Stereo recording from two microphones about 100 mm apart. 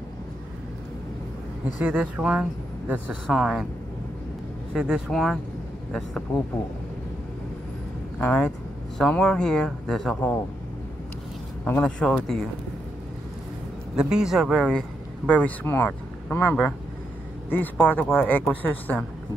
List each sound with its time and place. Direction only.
1.8 s speech: 15° right (ahead or behind)
3.3 s speech: 5° right (ahead or behind)
4.7 s speech: 10° right (ahead or behind)
8.2 s speech: 10° left (ahead or behind)
11.6 s speech: 20° left (ahead or behind)
12.0 s speech: 5° left (ahead or behind)
13.9 s speech: 10° right (ahead or behind)
14.7 s speech: 10° left (ahead or behind)